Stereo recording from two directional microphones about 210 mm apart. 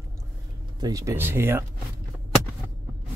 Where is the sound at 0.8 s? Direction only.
15° right (ahead or behind).